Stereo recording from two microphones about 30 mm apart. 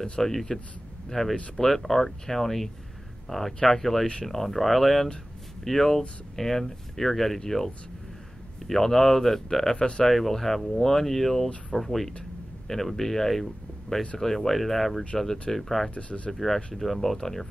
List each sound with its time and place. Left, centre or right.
0.2 s speech: centre
5.6 s speech: centre
9.8 s speech: left
10.0 s speech: centre
15.9 s speech: left
16.3 s speech: centre